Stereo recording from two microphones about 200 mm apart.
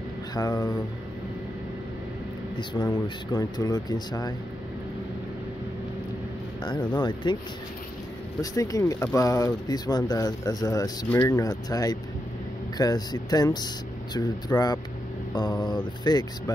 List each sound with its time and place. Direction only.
0.3 s speech: 20° left (ahead or behind)
2.5 s speech: 25° left (ahead or behind)
7.0 s speech: 20° left (ahead or behind)
8.4 s speech: 15° left (ahead or behind)